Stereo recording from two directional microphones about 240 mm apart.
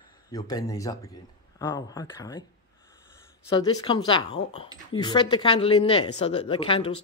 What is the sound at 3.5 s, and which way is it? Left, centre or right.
Speech, centre.